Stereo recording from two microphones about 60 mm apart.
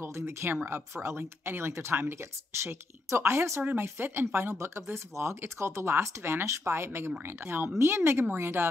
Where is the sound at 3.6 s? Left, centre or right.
Right.